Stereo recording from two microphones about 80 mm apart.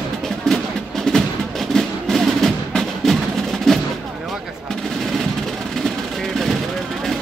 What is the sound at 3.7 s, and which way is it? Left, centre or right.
Gunshot, centre.